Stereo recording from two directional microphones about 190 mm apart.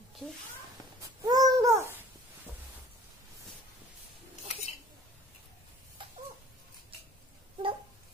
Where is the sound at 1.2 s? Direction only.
20° right (ahead or behind).